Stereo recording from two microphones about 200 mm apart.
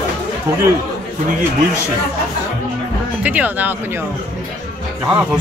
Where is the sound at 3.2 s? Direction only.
10° right (ahead or behind).